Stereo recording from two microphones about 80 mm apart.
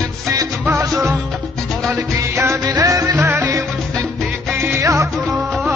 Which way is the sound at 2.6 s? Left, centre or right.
Right.